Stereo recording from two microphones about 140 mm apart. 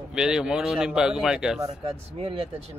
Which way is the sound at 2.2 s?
45° right (ahead or behind).